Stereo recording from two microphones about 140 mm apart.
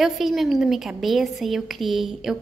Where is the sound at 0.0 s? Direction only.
Centre (ahead or behind).